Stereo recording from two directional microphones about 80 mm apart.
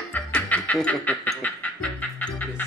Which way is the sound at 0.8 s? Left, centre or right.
Centre.